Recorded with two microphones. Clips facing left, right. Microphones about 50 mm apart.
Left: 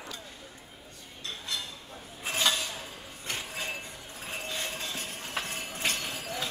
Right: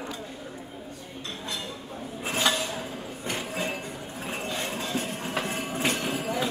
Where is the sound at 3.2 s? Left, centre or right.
Centre.